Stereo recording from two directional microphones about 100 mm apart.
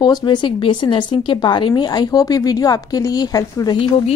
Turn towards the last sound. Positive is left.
turn(degrees=40)  # may be behind; listen again after turning